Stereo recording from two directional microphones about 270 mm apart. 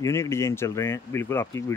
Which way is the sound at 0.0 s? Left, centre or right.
Centre.